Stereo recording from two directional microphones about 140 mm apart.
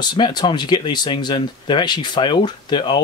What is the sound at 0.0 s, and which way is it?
Speech, 30° left (ahead or behind).